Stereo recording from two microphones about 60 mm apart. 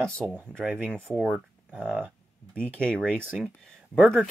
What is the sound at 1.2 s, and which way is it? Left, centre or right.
Speech, right.